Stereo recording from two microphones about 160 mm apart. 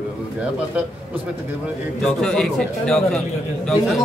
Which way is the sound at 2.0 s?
5° left (ahead or behind).